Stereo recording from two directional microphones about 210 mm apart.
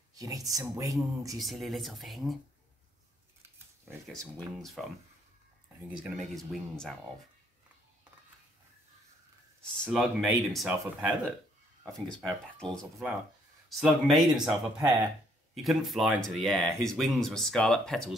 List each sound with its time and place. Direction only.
0.1 s speech: 15° right (ahead or behind)
1.3 s speech: centre (ahead or behind)
4.0 s speech: centre (ahead or behind)
5.9 s speech: centre (ahead or behind)
9.6 s speech: centre (ahead or behind)
15.5 s speech: centre (ahead or behind)